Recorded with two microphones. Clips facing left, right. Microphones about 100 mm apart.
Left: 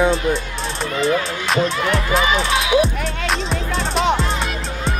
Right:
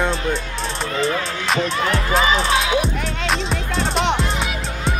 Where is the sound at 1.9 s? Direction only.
35° right (ahead or behind).